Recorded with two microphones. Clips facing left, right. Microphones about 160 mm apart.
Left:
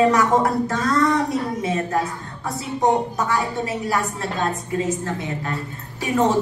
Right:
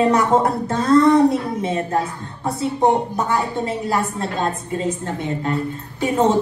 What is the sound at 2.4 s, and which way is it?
Speech, 30° right (ahead or behind).